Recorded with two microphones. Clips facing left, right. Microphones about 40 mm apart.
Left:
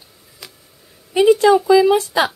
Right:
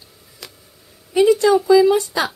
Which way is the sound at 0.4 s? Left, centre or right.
Centre.